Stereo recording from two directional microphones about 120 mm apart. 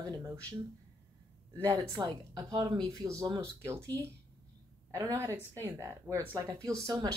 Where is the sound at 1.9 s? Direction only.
35° right (ahead or behind).